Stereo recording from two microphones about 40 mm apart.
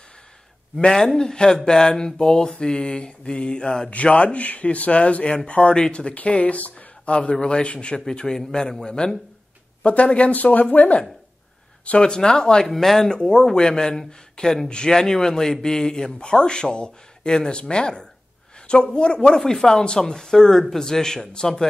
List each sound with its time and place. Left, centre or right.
0.9 s speech: centre
3.9 s a man's voice: left
7.3 s speech: left
9.8 s a man's voice: left
12.0 s speech: centre
12.6 s speech: centre
13.2 s speech: centre